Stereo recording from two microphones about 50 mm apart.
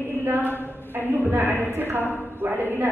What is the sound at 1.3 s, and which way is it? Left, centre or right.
A woman's voice, right.